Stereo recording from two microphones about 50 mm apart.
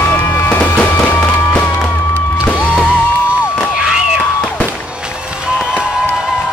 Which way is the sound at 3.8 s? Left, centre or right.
Centre.